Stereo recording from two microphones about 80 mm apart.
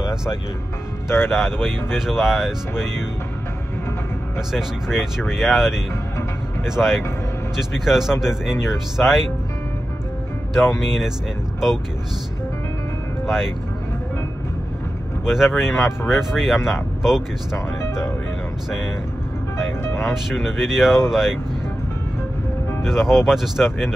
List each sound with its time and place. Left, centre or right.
1.0 s speech: left
1.3 s speech: centre
4.5 s speech: centre
15.2 s speech: centre
17.8 s music: left
19.8 s speech: left
20.2 s speech: centre
22.8 s speech: centre